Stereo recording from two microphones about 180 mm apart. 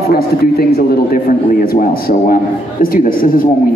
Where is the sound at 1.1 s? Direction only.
55° left (ahead or behind).